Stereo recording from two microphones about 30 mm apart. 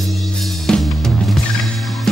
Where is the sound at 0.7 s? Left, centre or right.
Centre.